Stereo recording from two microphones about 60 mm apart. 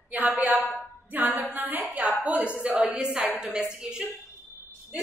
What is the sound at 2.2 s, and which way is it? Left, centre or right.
A woman's voice, right.